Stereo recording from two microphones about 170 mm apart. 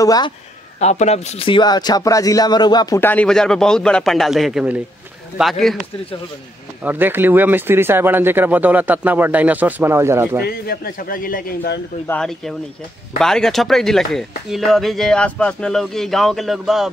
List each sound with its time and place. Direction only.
0.0 s a man's voice: 20° left (ahead or behind)
0.7 s a man's voice: 40° left (ahead or behind); by 3.0 s 25° left (ahead or behind)
3.0 s speech: 10° left (ahead or behind)
6.8 s speech: 10° right (ahead or behind)
10.4 s a man's voice: 60° left (ahead or behind)
12.1 s speech: 5° left (ahead or behind)